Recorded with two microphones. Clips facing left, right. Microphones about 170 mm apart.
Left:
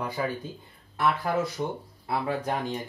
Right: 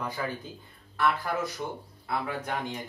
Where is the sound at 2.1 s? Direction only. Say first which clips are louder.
Left 4 dB; 30° left (ahead or behind).